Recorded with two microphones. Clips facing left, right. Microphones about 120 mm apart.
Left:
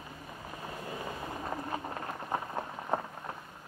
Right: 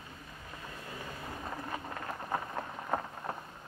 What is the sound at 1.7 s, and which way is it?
Run, 30° left (ahead or behind).